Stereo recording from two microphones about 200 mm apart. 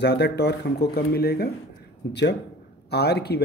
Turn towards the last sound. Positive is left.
turn(degrees=55)  # may be behind; listen again after turning